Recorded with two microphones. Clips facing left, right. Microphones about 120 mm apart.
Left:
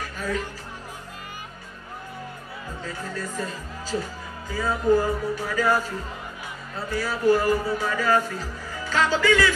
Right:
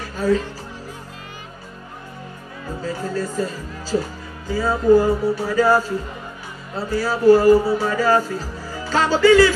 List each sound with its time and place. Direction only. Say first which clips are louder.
0.2 s speech: right 12 dB; 30° right (ahead or behind)
2.8 s speech: right 9 dB; 30° right (ahead or behind)